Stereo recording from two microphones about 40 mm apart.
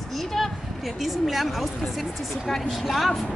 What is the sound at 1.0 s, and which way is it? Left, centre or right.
A woman's voice, centre.